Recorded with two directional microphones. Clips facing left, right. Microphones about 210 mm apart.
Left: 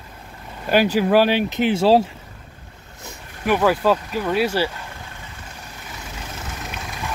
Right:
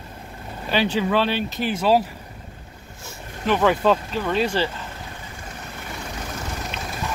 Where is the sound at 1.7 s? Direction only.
25° left (ahead or behind).